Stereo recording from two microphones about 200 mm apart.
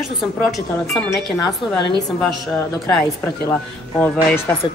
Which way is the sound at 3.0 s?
10° left (ahead or behind).